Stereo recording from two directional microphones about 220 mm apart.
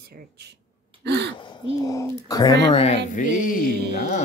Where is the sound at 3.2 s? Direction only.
35° left (ahead or behind).